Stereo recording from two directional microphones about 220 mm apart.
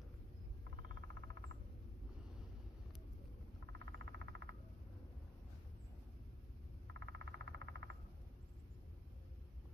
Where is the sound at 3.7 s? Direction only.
55° right (ahead or behind).